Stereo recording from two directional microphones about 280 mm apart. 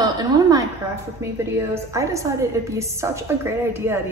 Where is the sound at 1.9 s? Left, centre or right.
Centre.